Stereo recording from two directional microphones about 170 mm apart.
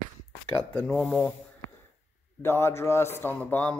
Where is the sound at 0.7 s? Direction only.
5° left (ahead or behind).